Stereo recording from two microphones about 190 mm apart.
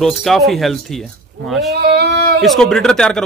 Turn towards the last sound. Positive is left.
turn(degrees=5)  # may be behind; listen again after turning